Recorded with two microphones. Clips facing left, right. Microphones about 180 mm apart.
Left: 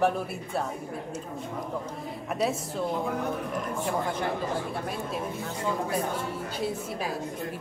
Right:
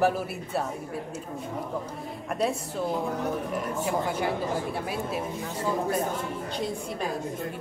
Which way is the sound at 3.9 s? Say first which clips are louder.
Right 2 dB; 5° right (ahead or behind).